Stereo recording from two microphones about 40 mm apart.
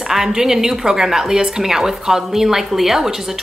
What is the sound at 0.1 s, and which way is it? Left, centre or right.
A woman's voice, centre.